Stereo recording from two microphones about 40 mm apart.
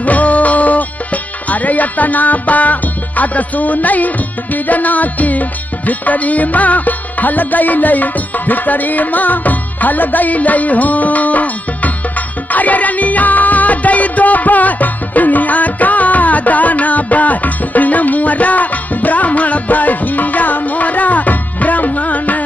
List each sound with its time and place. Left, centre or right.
0.0 s music: left